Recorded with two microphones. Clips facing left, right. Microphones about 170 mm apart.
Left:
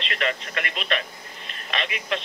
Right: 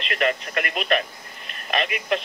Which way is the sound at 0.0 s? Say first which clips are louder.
Right 4 dB; 50° right (ahead or behind).